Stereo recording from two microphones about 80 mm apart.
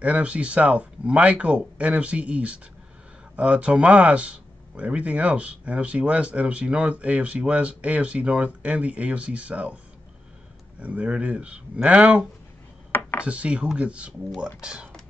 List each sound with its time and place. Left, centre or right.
0.0 s speech: centre
10.8 s speech: centre
12.9 s a sound: left
13.3 s speech: centre